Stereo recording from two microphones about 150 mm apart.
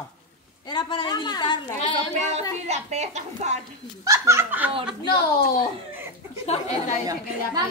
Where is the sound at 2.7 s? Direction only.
50° right (ahead or behind).